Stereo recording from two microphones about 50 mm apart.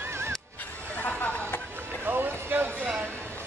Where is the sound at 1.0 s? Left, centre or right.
Left.